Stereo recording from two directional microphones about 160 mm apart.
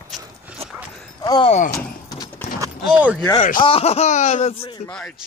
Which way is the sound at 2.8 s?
5° right (ahead or behind).